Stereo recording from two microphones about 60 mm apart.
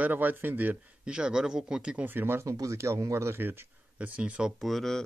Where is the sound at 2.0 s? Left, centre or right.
Right.